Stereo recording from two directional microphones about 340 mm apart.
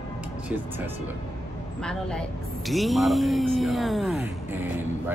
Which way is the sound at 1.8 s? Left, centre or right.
Centre.